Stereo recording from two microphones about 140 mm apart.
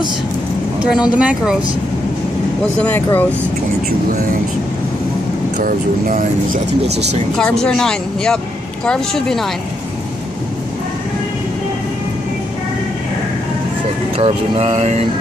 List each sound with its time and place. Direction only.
0.7 s speech: 5° right (ahead or behind)
2.8 s speech: 15° left (ahead or behind)
5.6 s speech: 80° right
7.3 s speech: 5° left (ahead or behind)
14.1 s speech: 50° right (ahead or behind)